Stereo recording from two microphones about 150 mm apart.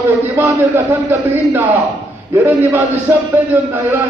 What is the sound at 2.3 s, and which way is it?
A man's voice, 15° right (ahead or behind).